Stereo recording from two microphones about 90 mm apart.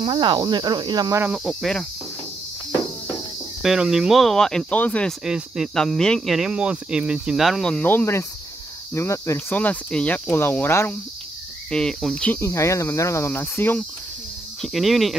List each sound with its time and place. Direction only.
0.0 s speech: 65° right (ahead or behind)
0.4 s speech: 55° right (ahead or behind)
1.3 s speech: centre (ahead or behind)
3.6 s speech: 5° right (ahead or behind); by 5.1 s 15° left (ahead or behind)
5.2 s speech: 5° right (ahead or behind)
5.8 s speech: 5° left (ahead or behind)
6.3 s speech: 10° right (ahead or behind)
7.8 s speech: 25° left (ahead or behind)
9.5 s speech: 15° left (ahead or behind)
11.7 s speech: 5° left (ahead or behind)
12.4 s speech: 35° left (ahead or behind)
14.6 s speech: centre (ahead or behind)